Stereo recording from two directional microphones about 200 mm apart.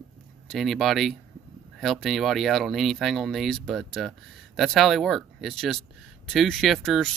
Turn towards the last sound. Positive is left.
turn(degrees=0)  # may be behind; listen again after turning